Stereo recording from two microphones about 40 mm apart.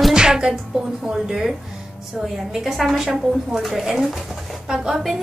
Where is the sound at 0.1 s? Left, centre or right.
Centre.